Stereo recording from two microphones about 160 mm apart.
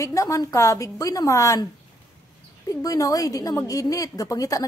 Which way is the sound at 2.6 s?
20° left (ahead or behind).